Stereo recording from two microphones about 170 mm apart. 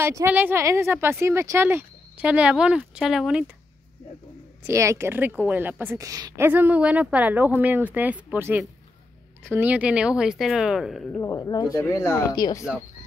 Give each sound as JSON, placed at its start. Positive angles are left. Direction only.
{"t": 0.0, "sound": "a woman's voice", "side_deg": -15}
{"t": 4.6, "sound": "a woman's voice", "side_deg": -15}
{"t": 11.1, "sound": "speech", "side_deg": 20}